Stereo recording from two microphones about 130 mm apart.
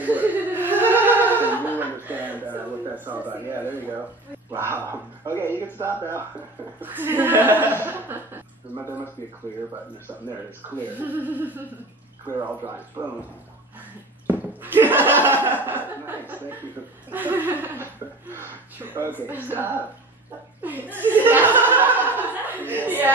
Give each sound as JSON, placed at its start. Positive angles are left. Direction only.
{"t": 0.0, "sound": "chuckle", "side_deg": -15}
{"t": 4.6, "sound": "speech", "side_deg": -20}
{"t": 6.8, "sound": "chuckle", "side_deg": -15}
{"t": 7.8, "sound": "speech", "side_deg": -15}
{"t": 11.0, "sound": "chuckle", "side_deg": -15}
{"t": 14.6, "sound": "chuckle", "side_deg": -15}